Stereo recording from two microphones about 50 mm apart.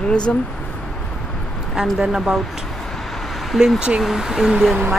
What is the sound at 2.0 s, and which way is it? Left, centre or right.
Speech, centre.